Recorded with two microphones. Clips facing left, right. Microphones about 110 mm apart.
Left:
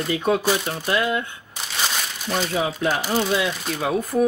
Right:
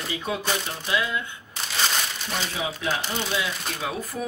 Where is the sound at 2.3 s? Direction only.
50° left (ahead or behind).